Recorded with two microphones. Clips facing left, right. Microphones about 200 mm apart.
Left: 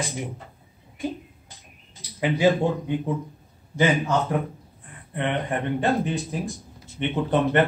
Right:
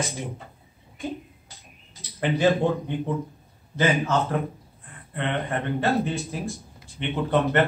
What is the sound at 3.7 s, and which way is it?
Speech, 15° left (ahead or behind).